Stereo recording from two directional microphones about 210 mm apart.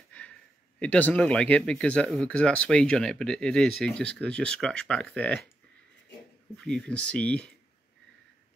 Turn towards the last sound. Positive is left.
turn(degrees=5)  # may be behind; listen again after turning